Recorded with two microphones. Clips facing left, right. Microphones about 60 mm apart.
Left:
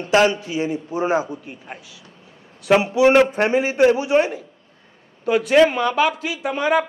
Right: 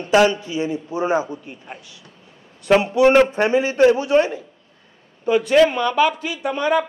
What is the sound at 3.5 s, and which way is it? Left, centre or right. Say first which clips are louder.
A man's voice: right 1 dB; centre.